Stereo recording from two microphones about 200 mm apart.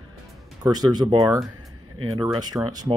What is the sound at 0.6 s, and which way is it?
Speech, 20° right (ahead or behind).